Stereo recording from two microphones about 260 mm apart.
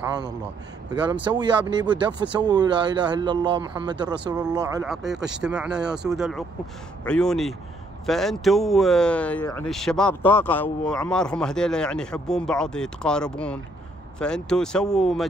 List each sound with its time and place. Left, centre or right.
0.0 s a man's voice: centre
4.8 s speech: centre